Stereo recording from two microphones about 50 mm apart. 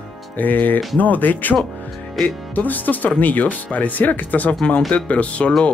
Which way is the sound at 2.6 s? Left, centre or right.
Left.